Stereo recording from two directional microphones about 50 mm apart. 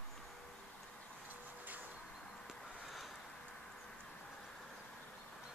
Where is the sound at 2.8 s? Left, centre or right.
Centre.